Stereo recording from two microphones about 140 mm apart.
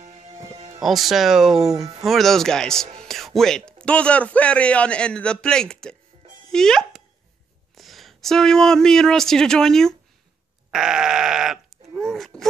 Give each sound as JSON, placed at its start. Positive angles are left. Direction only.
{"t": 0.0, "sound": "music", "side_deg": -50}
{"t": 0.8, "sound": "a man's voice", "side_deg": 0}
{"t": 10.7, "sound": "sheep", "side_deg": -5}
{"t": 12.0, "sound": "a sound", "side_deg": 5}